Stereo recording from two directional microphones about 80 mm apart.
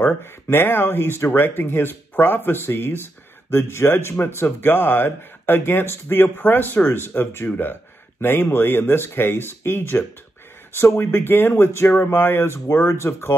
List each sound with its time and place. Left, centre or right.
0.0 s speech: left